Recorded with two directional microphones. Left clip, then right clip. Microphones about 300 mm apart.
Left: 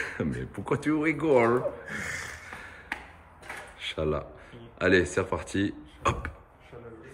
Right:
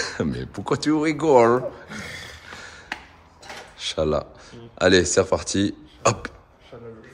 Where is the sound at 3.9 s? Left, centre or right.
Centre.